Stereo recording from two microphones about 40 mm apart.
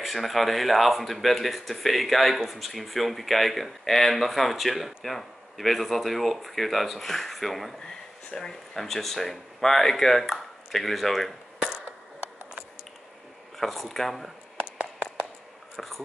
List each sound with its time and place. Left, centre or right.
0.0 s speech: centre
7.8 s a sound: left
8.5 s speech: centre
13.6 s speech: centre